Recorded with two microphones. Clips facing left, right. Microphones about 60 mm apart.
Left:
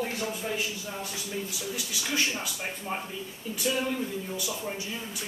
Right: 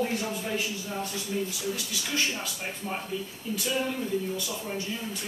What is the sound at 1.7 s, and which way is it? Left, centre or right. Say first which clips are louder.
Speech: left 1 dB; centre.